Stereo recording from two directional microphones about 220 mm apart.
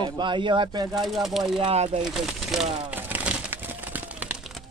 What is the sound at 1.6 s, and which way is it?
Speech, 30° right (ahead or behind).